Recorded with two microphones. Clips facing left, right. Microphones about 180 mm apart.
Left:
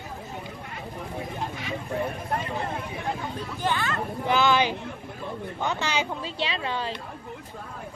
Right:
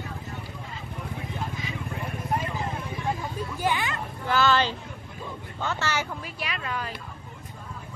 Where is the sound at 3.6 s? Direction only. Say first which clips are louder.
Even; 10° right (ahead or behind).